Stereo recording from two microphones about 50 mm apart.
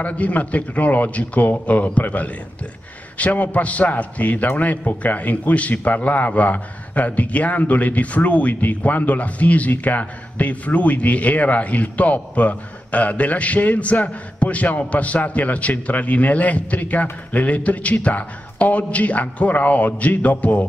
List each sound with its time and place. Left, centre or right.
0.0 s a man's voice: left